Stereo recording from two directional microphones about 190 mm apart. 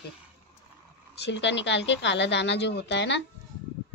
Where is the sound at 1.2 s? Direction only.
70° left (ahead or behind).